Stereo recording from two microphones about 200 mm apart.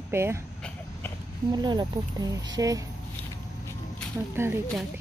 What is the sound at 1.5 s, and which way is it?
Speech, 20° right (ahead or behind).